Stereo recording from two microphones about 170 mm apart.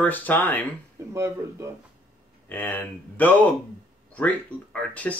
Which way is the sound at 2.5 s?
10° left (ahead or behind).